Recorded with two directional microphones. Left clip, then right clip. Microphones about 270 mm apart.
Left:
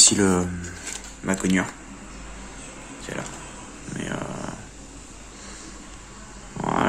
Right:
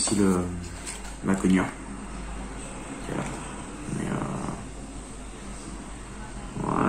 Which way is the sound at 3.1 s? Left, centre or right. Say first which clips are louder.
Even; left.